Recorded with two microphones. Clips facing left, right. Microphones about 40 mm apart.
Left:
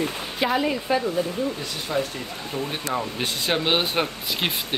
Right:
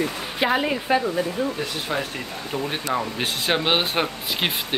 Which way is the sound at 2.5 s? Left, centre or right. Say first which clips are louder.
Right 2 dB; centre.